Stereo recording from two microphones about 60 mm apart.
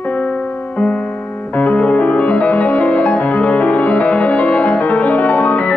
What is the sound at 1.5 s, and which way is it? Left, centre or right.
Music, left.